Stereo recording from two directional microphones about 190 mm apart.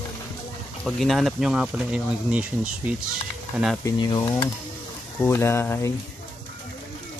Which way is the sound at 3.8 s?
25° left (ahead or behind).